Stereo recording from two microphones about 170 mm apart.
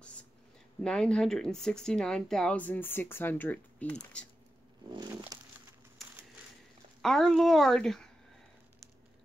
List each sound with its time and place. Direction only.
0.8 s speech: 5° left (ahead or behind)
4.9 s a sound: 20° right (ahead or behind)
7.0 s speech: centre (ahead or behind)